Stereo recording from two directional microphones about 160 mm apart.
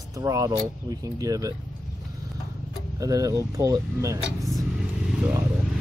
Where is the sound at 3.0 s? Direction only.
20° right (ahead or behind).